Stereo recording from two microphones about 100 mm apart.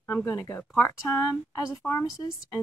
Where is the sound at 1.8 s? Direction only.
5° left (ahead or behind).